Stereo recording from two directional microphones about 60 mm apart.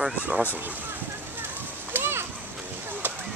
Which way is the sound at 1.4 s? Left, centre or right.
Right.